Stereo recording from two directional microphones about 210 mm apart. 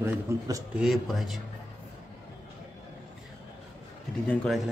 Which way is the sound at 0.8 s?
Centre (ahead or behind).